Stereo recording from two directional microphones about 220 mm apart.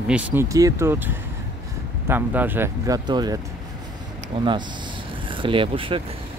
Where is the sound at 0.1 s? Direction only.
10° right (ahead or behind).